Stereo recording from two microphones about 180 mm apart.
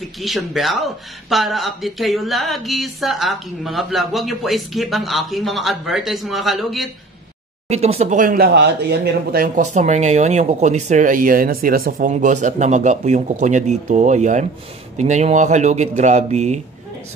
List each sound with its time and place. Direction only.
0.2 s speech: centre (ahead or behind)
7.6 s speech: 35° right (ahead or behind)
8.5 s speech: 65° right (ahead or behind)
9.6 s speech: 40° right (ahead or behind)